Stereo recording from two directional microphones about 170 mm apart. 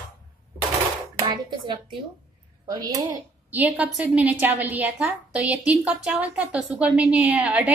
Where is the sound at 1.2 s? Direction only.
25° right (ahead or behind).